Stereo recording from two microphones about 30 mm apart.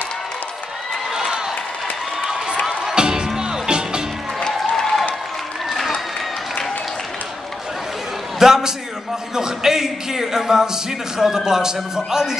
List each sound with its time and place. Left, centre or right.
1.1 s a sound: centre
2.6 s music: centre
3.0 s music: right
4.4 s music: centre
8.4 s a man's voice: centre